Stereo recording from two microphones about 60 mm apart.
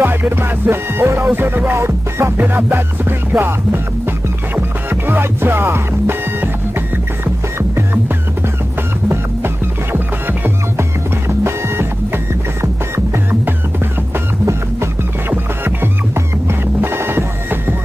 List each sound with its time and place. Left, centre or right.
0.0 s music: right
7.5 s music: right
9.9 s music: right
10.8 s music: right
12.9 s music: right